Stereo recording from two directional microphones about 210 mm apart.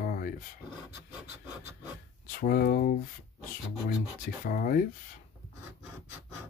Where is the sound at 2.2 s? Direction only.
40° left (ahead or behind).